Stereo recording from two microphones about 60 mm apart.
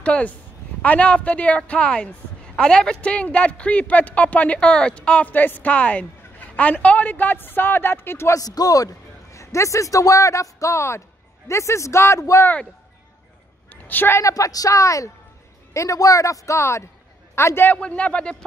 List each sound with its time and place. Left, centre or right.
0.0 s speech: centre
5.3 s a woman's voice: left
8.3 s a man's voice: left
13.7 s a sound: left
14.1 s a man's voice: left
17.7 s speech: left